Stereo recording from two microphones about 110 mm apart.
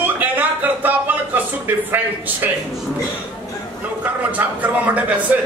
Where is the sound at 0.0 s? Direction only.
15° right (ahead or behind).